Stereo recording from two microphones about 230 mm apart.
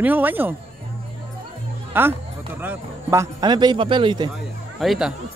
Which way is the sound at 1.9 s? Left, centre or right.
Centre.